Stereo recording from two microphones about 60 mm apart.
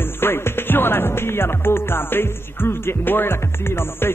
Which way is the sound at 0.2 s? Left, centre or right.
Left.